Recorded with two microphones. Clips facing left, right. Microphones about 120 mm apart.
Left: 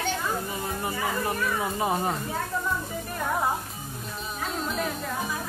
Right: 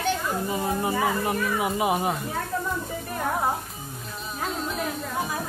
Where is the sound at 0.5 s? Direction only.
20° right (ahead or behind).